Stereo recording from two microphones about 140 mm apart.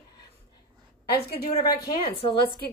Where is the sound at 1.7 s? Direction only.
40° left (ahead or behind).